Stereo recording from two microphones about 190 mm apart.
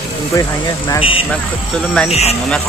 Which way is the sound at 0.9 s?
30° left (ahead or behind).